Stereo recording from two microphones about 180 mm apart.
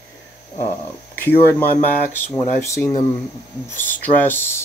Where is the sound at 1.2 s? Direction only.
10° left (ahead or behind).